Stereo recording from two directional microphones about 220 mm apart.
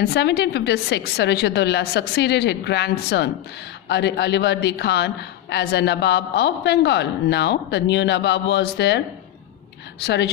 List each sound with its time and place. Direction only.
0.0 s a woman's voice: 45° left (ahead or behind)